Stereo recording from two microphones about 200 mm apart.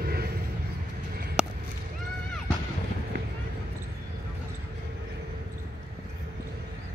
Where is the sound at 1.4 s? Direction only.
5° right (ahead or behind).